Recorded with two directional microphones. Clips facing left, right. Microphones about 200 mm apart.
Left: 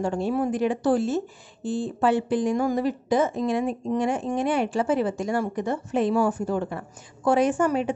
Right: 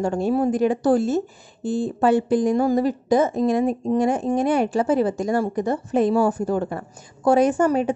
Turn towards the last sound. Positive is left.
turn(degrees=-40)  # may be behind; listen again after turning